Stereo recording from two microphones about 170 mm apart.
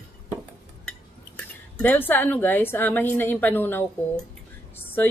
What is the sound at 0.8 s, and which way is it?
Speech, 5° left (ahead or behind).